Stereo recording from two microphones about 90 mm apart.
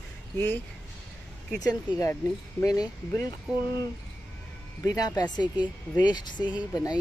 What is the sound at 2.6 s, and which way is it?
Speech, 45° left (ahead or behind).